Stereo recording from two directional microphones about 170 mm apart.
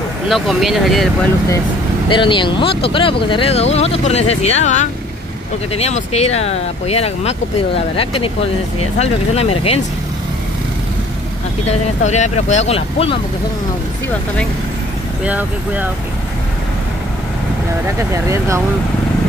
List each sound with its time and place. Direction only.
0.3 s speech: centre (ahead or behind)
2.0 s speech: 30° left (ahead or behind)
11.6 s speech: 45° left (ahead or behind)
15.2 s speech: 10° right (ahead or behind)
18.1 s speech: 15° right (ahead or behind)